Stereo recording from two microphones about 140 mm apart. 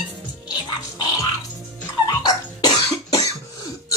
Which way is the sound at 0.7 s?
25° left (ahead or behind).